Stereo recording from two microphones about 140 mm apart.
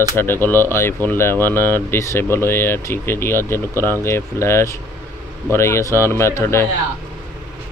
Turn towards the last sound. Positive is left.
turn(degrees=20)  # may be behind; listen again after turning